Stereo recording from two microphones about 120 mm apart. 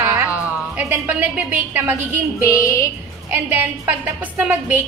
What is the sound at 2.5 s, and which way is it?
Female singing, 25° left (ahead or behind).